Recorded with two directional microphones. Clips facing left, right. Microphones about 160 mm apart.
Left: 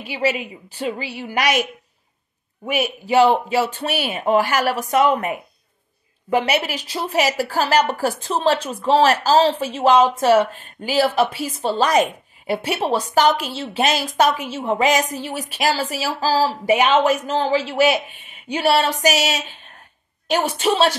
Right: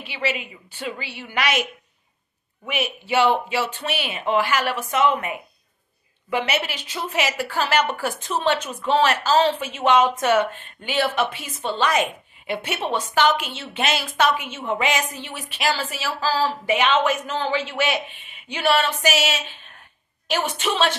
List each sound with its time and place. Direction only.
0.0 s a woman's voice: 40° left (ahead or behind)